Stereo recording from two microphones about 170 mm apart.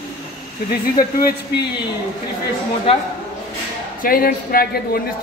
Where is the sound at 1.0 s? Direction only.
60° left (ahead or behind).